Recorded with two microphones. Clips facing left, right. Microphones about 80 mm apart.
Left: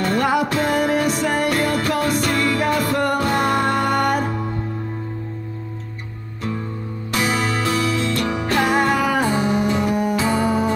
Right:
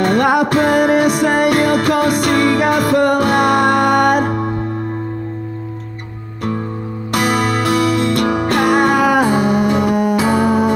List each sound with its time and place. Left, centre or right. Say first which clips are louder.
0.0 s music: right 5 dB; right
7.1 s music: right 5 dB; right